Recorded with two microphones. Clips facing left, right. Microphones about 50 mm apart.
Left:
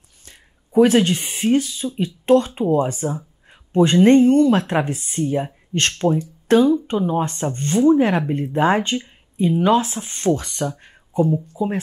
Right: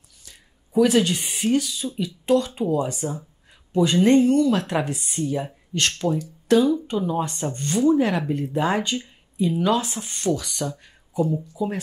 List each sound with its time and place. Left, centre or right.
0.2 s speech: left
11.6 s speech: left